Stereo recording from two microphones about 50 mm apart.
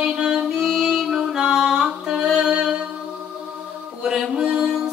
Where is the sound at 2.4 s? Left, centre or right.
Right.